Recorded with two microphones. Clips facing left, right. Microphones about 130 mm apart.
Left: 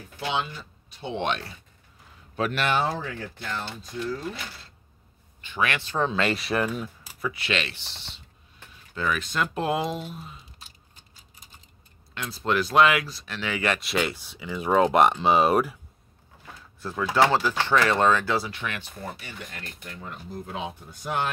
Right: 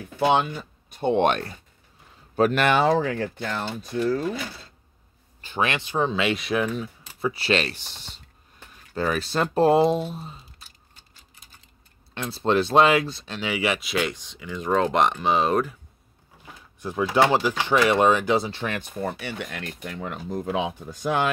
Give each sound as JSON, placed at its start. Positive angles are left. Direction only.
{"t": 0.2, "sound": "speech", "side_deg": -55}
{"t": 2.7, "sound": "speech", "side_deg": -90}
{"t": 5.4, "sound": "speech", "side_deg": -30}
{"t": 5.9, "sound": "speech", "side_deg": 0}
{"t": 7.2, "sound": "speech", "side_deg": -30}
{"t": 12.1, "sound": "speech", "side_deg": -30}
{"t": 16.8, "sound": "speech", "side_deg": -15}
{"t": 18.5, "sound": "speech", "side_deg": -35}
{"t": 19.0, "sound": "speech", "side_deg": -70}